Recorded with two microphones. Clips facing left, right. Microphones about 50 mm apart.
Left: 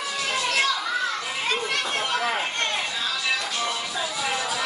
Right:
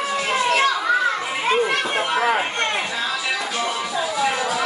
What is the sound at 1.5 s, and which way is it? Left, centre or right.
Chatter, right.